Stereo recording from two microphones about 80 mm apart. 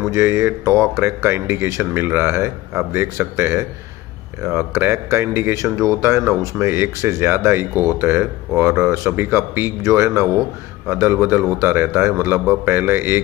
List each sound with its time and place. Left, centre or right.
0.1 s a man's voice: right